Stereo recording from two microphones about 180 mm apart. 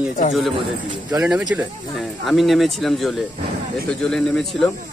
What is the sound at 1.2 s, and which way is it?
Speech, 5° right (ahead or behind).